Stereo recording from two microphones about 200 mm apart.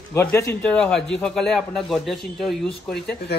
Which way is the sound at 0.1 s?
15° left (ahead or behind).